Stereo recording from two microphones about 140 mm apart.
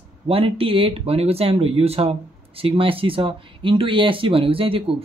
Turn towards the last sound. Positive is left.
turn(degrees=-40)  # may be behind; listen again after turning